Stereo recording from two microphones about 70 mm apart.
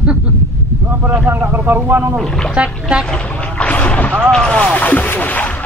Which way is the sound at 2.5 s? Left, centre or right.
Centre.